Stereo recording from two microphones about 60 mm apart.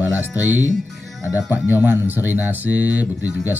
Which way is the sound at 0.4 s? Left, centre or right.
Right.